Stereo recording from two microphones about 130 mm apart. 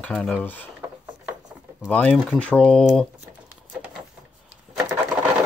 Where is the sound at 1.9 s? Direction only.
5° left (ahead or behind).